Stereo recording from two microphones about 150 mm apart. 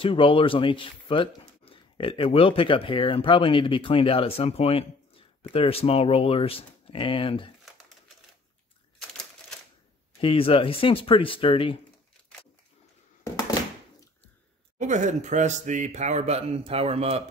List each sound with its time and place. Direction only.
0.0 s speech: 35° left (ahead or behind)
10.2 s speech: 35° left (ahead or behind)
14.8 s speech: 55° right (ahead or behind)